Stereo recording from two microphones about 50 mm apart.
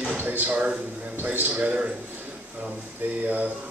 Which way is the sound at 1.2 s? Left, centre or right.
Right.